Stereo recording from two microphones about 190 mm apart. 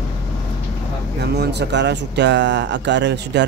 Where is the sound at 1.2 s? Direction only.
60° right (ahead or behind).